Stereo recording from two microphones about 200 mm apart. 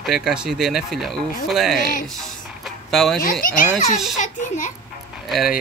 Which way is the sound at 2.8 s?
Centre (ahead or behind).